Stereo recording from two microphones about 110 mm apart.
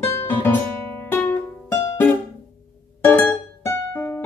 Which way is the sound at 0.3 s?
20° left (ahead or behind).